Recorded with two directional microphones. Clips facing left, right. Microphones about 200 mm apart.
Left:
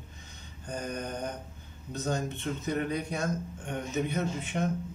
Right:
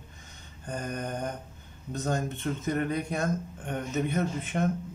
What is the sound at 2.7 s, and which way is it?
Speech, 50° right (ahead or behind).